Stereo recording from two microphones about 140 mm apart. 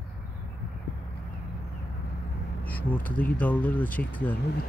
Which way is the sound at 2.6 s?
10° left (ahead or behind).